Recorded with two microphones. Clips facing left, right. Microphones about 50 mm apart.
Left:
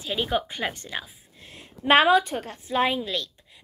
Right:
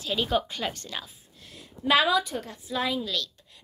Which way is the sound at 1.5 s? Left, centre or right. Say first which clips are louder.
Left 4 dB; left.